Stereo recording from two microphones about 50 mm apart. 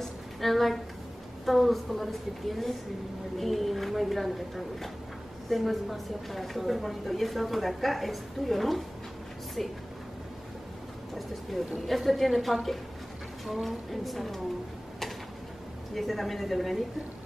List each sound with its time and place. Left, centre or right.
0.0 s a sound: centre
1.4 s a woman's voice: centre
11.9 s a woman's voice: centre
13.7 s a woman's voice: centre
15.9 s a woman's voice: centre